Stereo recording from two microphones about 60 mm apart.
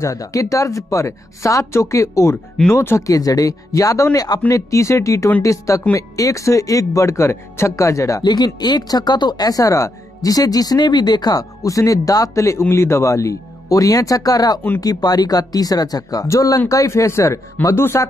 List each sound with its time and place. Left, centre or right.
0.0 s speech: left
2.7 s speech: left
3.0 s speech: left
4.5 s speech: left
8.8 s speech: left
11.2 s speech: left